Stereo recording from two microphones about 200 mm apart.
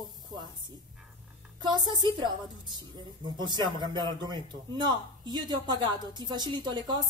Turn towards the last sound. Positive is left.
turn(degrees=-20)  # may be behind; listen again after turning